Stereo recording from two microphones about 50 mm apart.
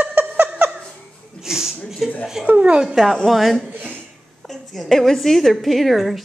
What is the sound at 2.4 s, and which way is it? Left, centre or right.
Speech, right.